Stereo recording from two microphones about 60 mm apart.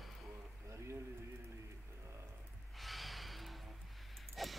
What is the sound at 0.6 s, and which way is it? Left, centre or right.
Speech, right.